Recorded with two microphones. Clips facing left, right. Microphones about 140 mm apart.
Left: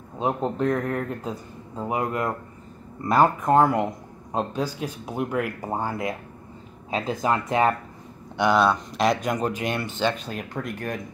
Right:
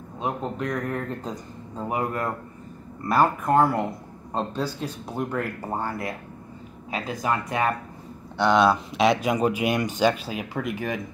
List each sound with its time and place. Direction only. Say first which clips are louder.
0.2 s speech: left 4 dB; 30° left (ahead or behind)
0.9 s speech: left 1 dB; 5° left (ahead or behind)
1.9 s speech: left 1 dB; 20° left (ahead or behind)
8.4 s speech: right 1 dB; 10° left (ahead or behind)